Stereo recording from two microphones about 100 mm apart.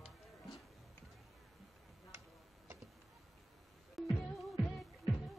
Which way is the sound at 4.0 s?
Centre (ahead or behind).